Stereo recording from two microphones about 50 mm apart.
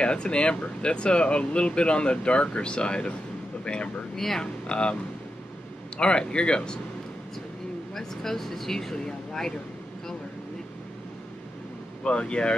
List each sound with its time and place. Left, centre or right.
0.0 s speech: left
4.2 s speech: centre
4.6 s speech: centre
5.9 s speech: centre
7.9 s speech: centre
12.0 s speech: centre